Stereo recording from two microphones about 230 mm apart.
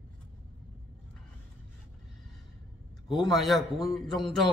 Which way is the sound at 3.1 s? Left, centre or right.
Centre.